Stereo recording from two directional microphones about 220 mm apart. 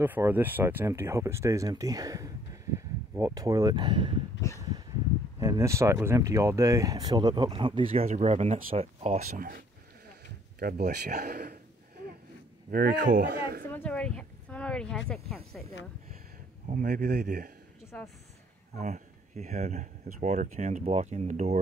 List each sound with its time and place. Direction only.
0.0 s speech: 10° right (ahead or behind)
4.4 s a sound: 15° left (ahead or behind)
5.4 s speech: 15° right (ahead or behind); by 9.3 s 30° right (ahead or behind)
10.6 s speech: 45° right (ahead or behind)
12.7 s a man's voice: 45° right (ahead or behind)
13.7 s snake: 5° left (ahead or behind)
16.6 s speech: 35° right (ahead or behind)
17.9 s speech: 5° left (ahead or behind)
18.8 s speech: 30° right (ahead or behind)